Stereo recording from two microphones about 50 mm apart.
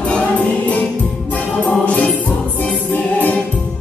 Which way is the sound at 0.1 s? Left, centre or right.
Left.